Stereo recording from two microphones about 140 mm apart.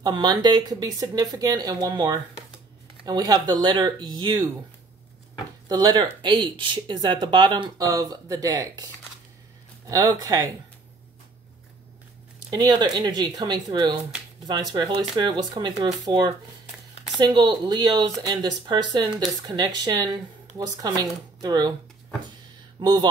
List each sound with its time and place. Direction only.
0.0 s speech: 30° right (ahead or behind)
5.7 s speech: 30° right (ahead or behind)
12.4 s speech: 30° right (ahead or behind)
22.8 s speech: 35° right (ahead or behind)